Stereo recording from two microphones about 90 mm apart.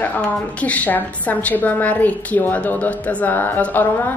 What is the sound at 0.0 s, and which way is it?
A woman's voice, 15° left (ahead or behind).